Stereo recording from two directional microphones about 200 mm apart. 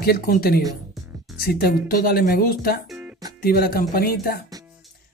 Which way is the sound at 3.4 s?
50° left (ahead or behind).